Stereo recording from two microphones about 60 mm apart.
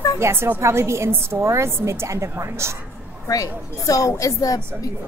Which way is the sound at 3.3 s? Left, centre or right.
Left.